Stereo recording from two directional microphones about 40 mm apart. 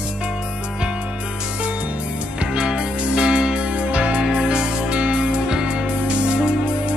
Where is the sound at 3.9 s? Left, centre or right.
Right.